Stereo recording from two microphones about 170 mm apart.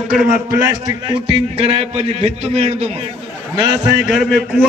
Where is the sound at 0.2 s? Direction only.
15° right (ahead or behind).